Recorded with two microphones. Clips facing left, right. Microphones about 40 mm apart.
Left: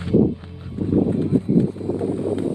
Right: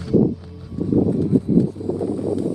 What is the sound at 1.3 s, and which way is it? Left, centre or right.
Wind noise, left.